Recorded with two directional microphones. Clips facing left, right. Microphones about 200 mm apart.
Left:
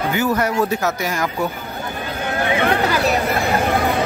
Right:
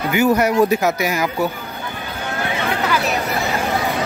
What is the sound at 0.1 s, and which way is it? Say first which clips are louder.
Speech: right 6 dB; 10° right (ahead or behind).